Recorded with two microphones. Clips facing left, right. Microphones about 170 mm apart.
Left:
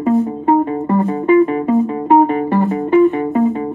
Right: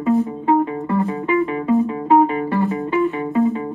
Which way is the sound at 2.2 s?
45° left (ahead or behind).